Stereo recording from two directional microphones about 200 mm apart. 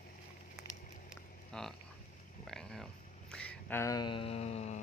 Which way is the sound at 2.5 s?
Centre (ahead or behind).